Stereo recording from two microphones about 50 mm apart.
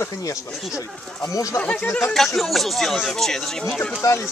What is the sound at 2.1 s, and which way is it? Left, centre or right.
Speech, centre.